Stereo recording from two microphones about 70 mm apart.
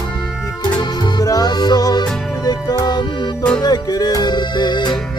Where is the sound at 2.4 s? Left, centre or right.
Left.